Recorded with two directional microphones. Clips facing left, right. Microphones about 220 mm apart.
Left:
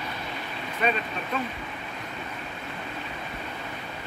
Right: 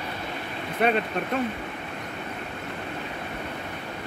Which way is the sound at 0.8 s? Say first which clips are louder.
Right 4 dB; 65° right (ahead or behind).